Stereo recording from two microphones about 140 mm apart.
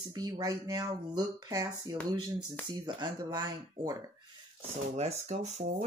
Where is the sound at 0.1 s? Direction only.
25° right (ahead or behind).